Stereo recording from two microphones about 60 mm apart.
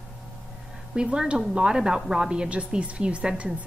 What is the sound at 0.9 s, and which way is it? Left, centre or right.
A woman's voice, centre.